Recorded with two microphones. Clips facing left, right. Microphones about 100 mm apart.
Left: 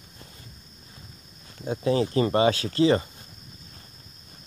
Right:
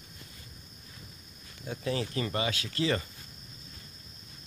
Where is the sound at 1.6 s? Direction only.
25° left (ahead or behind).